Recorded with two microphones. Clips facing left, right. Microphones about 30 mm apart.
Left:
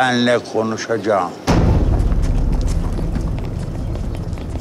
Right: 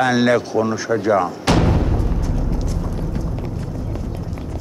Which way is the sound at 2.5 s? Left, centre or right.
Centre.